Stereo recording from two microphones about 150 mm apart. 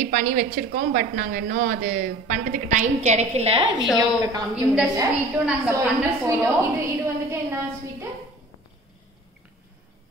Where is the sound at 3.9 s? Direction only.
25° right (ahead or behind).